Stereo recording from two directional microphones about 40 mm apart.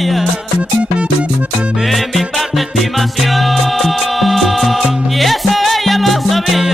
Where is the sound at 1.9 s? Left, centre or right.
Centre.